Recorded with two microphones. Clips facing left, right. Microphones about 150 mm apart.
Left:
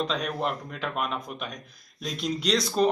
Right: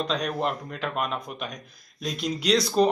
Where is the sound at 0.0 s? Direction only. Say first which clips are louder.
Right 1 dB; centre (ahead or behind).